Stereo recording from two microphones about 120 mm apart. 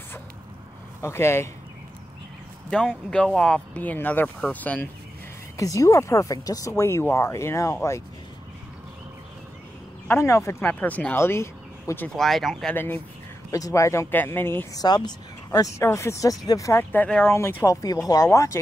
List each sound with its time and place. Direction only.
1.0 s speech: 20° left (ahead or behind)
2.9 s speech: 5° left (ahead or behind)
5.6 s speech: 25° left (ahead or behind)
10.0 s speech: 25° left (ahead or behind)
10.7 s speech: 10° left (ahead or behind)
12.2 s speech: centre (ahead or behind)
12.7 s speech: 15° left (ahead or behind)
13.5 s speech: 30° left (ahead or behind)
14.7 s speech: 35° left (ahead or behind)
15.8 s speech: 25° left (ahead or behind)